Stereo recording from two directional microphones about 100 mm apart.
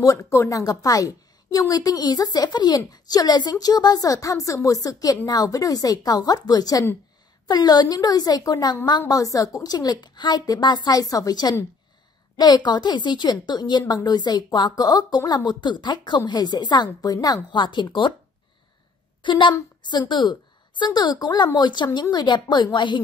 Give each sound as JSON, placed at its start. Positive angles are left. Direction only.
{"t": 0.0, "sound": "a woman's voice", "side_deg": 30}
{"t": 19.2, "sound": "a woman's voice", "side_deg": 50}